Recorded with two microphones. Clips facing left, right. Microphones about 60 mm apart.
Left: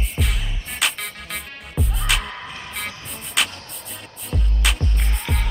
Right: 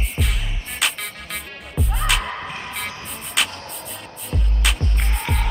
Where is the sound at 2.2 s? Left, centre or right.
Centre.